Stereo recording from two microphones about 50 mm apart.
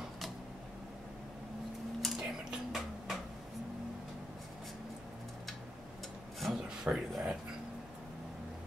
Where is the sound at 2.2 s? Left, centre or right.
Centre.